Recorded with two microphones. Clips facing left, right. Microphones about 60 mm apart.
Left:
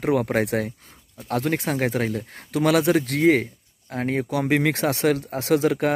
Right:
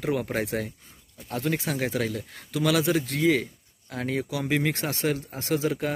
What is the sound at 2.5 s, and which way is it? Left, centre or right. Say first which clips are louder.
Speech: left 5 dB; left.